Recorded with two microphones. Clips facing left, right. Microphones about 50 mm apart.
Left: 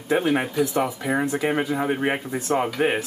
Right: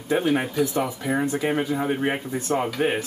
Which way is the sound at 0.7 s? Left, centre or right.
Left.